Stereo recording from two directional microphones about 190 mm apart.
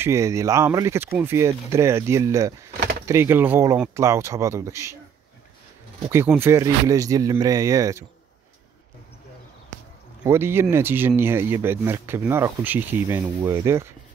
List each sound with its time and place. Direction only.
0.0 s speech: 15° right (ahead or behind)
6.0 s speech: 10° right (ahead or behind)
10.2 s speech: 15° right (ahead or behind)